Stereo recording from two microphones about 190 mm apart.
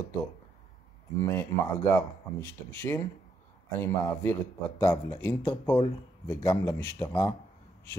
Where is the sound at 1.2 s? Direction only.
15° left (ahead or behind).